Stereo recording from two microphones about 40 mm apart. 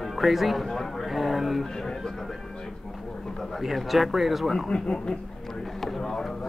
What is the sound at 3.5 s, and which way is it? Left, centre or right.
Speech, centre.